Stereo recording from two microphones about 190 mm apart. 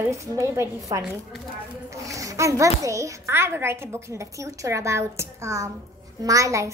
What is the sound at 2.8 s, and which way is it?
A woman's voice, 15° right (ahead or behind).